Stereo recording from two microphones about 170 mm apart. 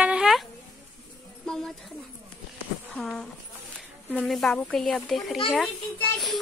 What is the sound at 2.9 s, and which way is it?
A child's voice, centre (ahead or behind).